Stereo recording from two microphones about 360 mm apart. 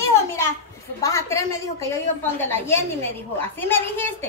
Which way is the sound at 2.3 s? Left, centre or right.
Centre.